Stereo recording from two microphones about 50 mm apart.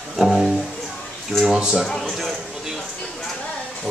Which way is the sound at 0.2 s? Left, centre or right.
Centre.